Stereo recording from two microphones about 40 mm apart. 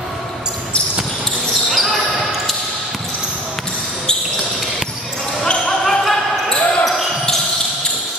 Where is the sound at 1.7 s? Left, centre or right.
Centre.